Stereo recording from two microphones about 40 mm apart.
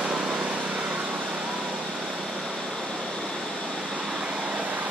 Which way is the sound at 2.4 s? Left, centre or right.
Centre.